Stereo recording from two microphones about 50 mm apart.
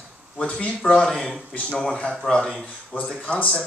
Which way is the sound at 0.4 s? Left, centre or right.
Centre.